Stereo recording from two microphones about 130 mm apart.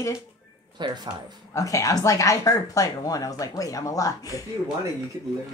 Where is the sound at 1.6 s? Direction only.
25° left (ahead or behind).